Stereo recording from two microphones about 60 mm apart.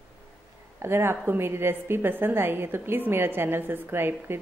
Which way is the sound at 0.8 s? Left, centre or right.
Right.